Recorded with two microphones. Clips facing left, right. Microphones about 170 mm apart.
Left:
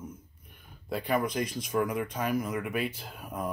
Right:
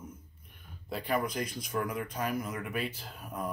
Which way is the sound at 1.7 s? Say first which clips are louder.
Left 5 dB; 50° left (ahead or behind).